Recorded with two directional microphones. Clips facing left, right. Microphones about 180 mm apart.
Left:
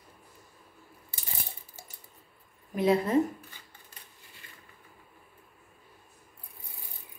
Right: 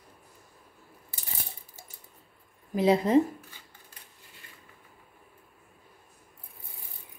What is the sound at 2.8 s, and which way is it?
Speech, 25° right (ahead or behind).